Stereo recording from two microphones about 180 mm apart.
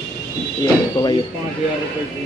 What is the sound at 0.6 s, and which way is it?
Speech, 25° left (ahead or behind).